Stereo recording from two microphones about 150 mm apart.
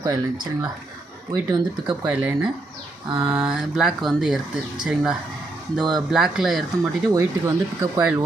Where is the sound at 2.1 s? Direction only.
10° right (ahead or behind).